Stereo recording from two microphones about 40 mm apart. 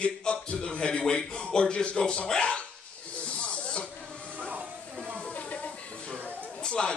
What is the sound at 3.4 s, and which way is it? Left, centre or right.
Snake, left.